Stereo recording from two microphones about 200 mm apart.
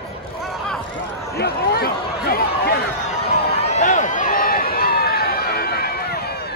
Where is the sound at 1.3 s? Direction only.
50° left (ahead or behind).